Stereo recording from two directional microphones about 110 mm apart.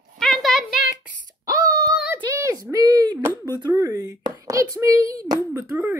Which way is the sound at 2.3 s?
30° right (ahead or behind).